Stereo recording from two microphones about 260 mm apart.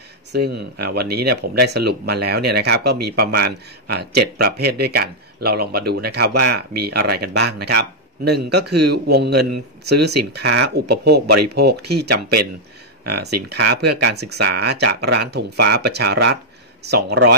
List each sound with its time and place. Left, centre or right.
0.3 s speech: right
13.2 s speech: right